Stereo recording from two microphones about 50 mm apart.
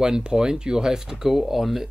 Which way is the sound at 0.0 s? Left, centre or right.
Centre.